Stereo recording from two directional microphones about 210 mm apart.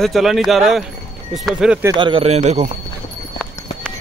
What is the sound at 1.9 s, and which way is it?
Speech, 25° right (ahead or behind).